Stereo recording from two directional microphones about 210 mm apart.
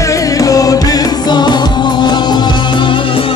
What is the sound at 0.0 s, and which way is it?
Music, 15° left (ahead or behind).